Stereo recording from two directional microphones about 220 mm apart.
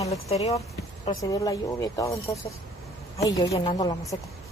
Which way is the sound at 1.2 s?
15° left (ahead or behind).